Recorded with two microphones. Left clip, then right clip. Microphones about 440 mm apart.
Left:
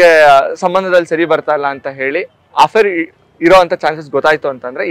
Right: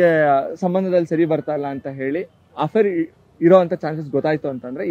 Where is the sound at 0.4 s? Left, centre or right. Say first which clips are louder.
Left 9 dB; left.